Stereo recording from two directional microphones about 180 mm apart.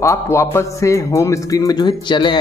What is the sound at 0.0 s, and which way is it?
A man's voice, 15° left (ahead or behind).